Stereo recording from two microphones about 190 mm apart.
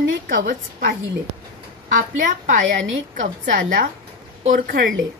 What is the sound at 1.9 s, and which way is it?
Speech, 45° right (ahead or behind).